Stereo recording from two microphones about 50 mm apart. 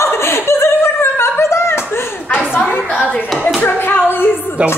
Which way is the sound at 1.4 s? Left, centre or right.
Left.